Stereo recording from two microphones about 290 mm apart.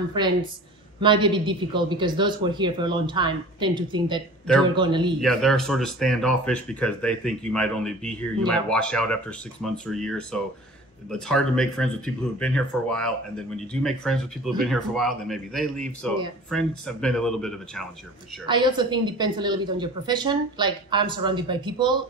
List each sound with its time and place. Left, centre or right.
1.0 s a woman's voice: centre
5.2 s speech: centre
18.4 s a woman's voice: centre